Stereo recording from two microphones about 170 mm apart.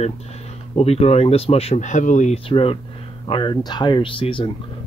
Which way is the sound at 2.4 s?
35° left (ahead or behind).